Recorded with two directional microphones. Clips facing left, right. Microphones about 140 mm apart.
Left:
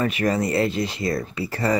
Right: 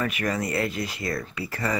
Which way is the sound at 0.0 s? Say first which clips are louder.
Left 5 dB; 30° left (ahead or behind).